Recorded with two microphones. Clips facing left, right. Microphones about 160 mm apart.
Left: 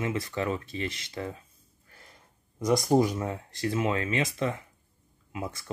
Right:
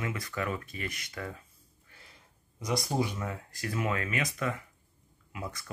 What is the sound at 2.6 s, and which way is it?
Speech, 50° left (ahead or behind).